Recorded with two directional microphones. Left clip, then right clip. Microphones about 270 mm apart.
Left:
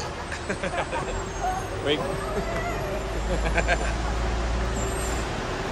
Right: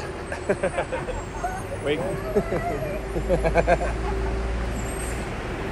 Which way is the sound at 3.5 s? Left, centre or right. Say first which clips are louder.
Right 3 dB; centre.